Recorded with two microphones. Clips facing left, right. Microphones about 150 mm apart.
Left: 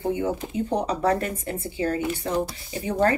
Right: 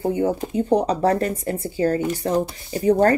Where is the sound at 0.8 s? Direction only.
35° right (ahead or behind).